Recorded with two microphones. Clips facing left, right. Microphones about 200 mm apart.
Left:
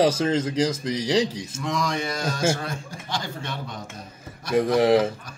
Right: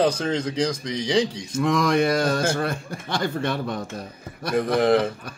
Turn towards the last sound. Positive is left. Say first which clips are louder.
# left 1 dB
turn(degrees=10)  # may be behind; listen again after turning